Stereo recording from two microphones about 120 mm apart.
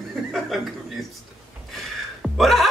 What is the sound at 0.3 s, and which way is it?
Speech, centre (ahead or behind).